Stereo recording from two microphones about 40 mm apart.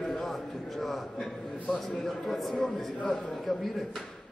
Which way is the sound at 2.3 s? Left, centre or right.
Centre.